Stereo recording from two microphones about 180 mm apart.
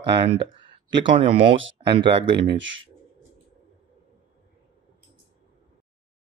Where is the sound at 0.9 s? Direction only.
30° right (ahead or behind).